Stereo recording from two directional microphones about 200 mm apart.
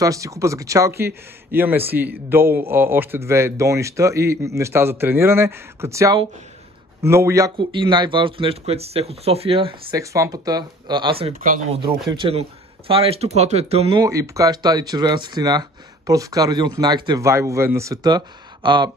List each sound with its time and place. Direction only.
0.0 s a man's voice: 15° right (ahead or behind)
9.9 s a man's voice: 15° right (ahead or behind)
14.0 s a man's voice: 15° right (ahead or behind)